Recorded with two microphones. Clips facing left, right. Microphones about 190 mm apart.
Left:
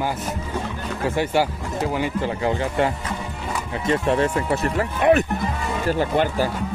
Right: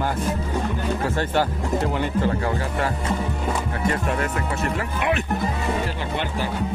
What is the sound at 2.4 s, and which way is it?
Speech, 20° left (ahead or behind).